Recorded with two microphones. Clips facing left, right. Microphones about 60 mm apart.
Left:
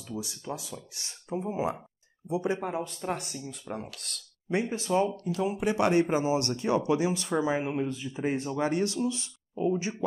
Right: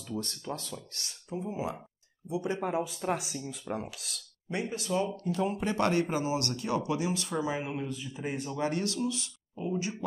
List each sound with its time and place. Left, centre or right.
0.0 s speech: centre; by 2.6 s left
2.6 s speech: centre
4.5 s speech: left
5.3 s speech: centre; by 9.3 s left